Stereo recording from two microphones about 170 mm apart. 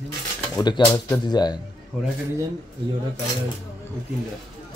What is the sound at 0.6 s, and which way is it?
A man's voice, 25° left (ahead or behind).